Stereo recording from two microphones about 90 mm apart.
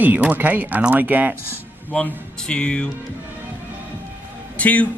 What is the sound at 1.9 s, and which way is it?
Speech, 10° left (ahead or behind).